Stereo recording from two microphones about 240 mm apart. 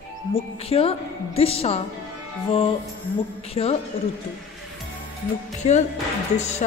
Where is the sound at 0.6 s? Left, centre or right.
Left.